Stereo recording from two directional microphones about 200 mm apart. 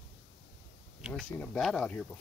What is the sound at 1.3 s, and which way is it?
Speech, centre (ahead or behind).